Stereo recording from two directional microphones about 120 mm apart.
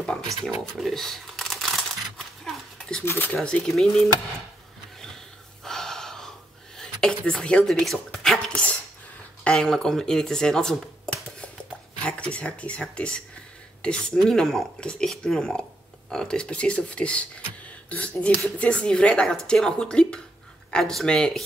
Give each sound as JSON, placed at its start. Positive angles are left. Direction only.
{"t": 0.0, "sound": "speech", "side_deg": 5}
{"t": 2.1, "sound": "a sound", "side_deg": 5}
{"t": 3.1, "sound": "speech", "side_deg": 15}
{"t": 3.5, "sound": "speech", "side_deg": 5}
{"t": 5.0, "sound": "snort", "side_deg": 5}
{"t": 6.8, "sound": "speech", "side_deg": 5}